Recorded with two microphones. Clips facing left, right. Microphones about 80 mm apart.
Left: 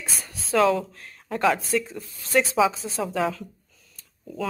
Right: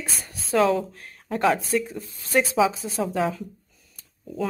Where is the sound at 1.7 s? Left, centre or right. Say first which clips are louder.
Right 1 dB; right.